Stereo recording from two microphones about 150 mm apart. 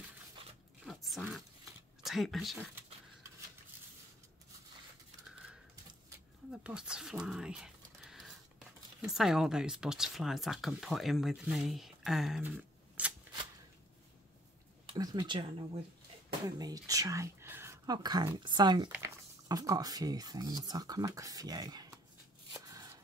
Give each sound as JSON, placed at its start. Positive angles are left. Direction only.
{"t": 0.8, "sound": "a sound", "side_deg": 0}
{"t": 2.0, "sound": "speech", "side_deg": 0}
{"t": 6.5, "sound": "speech", "side_deg": -5}
{"t": 13.0, "sound": "shuffling cards", "side_deg": -10}
{"t": 15.0, "sound": "speech", "side_deg": -25}
{"t": 16.4, "sound": "speech", "side_deg": -25}
{"t": 22.5, "sound": "shuffling cards", "side_deg": -20}